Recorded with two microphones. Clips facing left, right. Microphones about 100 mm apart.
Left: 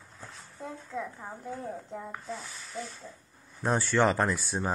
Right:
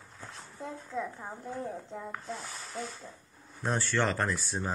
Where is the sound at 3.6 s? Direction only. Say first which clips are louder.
Left 4 dB; 15° left (ahead or behind).